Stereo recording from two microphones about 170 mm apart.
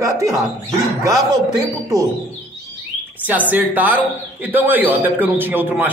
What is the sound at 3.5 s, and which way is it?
A man's voice, 10° right (ahead or behind).